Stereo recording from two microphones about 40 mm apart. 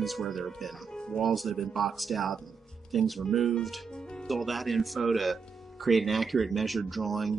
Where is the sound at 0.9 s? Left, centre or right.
Centre.